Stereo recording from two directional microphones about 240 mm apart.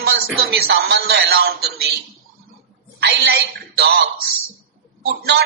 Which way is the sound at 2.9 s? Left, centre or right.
Right.